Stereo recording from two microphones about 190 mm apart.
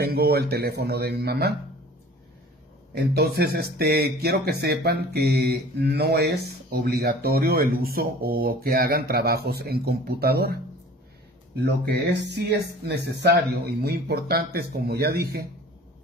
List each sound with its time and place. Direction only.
0.0 s speech: 55° right (ahead or behind)
2.9 s speech: 55° right (ahead or behind)
11.6 s speech: 60° right (ahead or behind)